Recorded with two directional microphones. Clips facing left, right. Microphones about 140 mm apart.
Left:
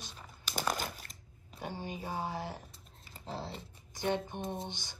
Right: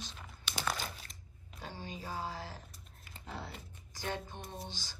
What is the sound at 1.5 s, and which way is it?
A woman's voice, 15° left (ahead or behind).